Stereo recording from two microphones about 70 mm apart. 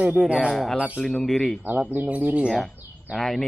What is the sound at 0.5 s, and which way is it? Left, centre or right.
A man's voice, centre.